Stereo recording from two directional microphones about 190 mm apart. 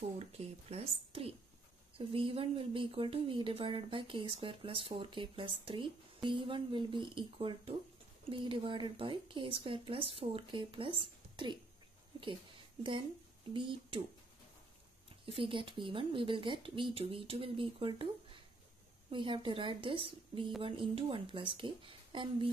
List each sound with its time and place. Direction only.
0.4 s a woman's voice: 35° right (ahead or behind)
13.5 s speech: 25° right (ahead or behind)
15.2 s speech: 30° right (ahead or behind)